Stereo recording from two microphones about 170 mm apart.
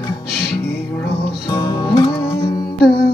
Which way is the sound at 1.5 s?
25° left (ahead or behind).